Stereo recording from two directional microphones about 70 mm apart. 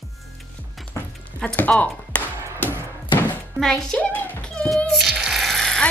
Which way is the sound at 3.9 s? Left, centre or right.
Left.